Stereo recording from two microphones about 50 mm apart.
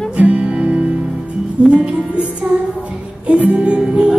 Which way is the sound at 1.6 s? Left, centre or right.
Right.